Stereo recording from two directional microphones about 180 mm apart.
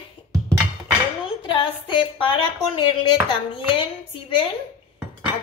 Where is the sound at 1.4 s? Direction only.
30° left (ahead or behind).